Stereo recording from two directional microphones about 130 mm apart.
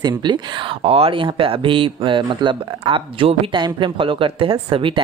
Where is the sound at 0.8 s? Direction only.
45° right (ahead or behind).